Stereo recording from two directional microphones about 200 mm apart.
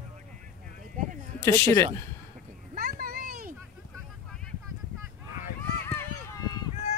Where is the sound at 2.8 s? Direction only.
45° right (ahead or behind).